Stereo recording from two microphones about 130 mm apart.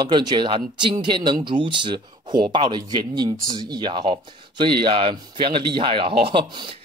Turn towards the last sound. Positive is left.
turn(degrees=-40)  # may be behind; listen again after turning